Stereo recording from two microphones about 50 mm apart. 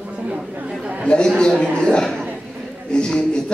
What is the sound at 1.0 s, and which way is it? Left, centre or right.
A man's voice, centre.